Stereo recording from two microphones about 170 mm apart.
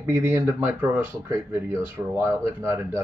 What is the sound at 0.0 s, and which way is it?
Speech, 10° right (ahead or behind).